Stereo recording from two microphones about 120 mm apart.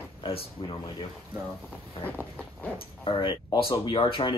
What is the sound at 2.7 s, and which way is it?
Speech, 45° left (ahead or behind).